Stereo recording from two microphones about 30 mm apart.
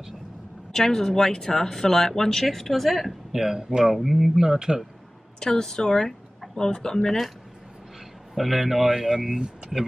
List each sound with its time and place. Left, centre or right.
0.7 s speech: centre
3.3 s a man's voice: centre
4.0 s speech: centre
4.4 s a man's voice: centre
5.4 s a woman's voice: centre
8.4 s a man's voice: centre